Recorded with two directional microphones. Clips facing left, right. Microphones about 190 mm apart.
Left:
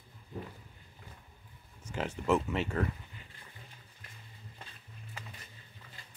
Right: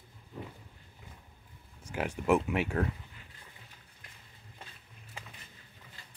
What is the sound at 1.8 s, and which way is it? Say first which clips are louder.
Speech: right 2 dB; 10° right (ahead or behind).